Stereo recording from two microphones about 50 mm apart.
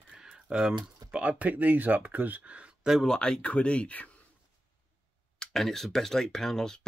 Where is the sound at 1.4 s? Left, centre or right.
Right.